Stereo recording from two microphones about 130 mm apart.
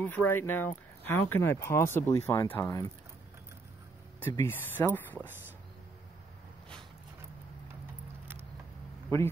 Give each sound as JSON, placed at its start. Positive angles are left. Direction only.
{"t": 0.0, "sound": "speech", "side_deg": 15}
{"t": 4.2, "sound": "speech", "side_deg": 20}